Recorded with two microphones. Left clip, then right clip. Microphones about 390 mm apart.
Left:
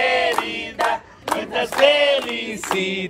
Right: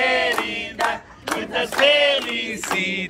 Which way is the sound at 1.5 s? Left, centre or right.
Centre.